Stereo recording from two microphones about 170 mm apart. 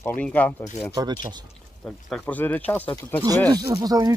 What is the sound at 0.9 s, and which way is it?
Speech, 25° right (ahead or behind).